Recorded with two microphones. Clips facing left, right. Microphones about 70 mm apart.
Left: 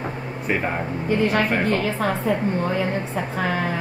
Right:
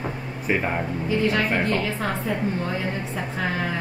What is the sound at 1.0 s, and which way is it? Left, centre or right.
A woman's voice, left.